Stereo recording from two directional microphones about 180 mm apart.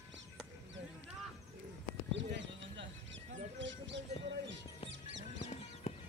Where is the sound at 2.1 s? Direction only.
80° right.